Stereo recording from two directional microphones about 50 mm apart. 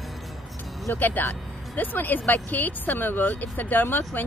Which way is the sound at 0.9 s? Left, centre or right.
Left.